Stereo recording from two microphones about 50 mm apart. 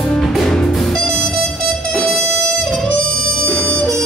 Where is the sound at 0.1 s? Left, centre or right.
Centre.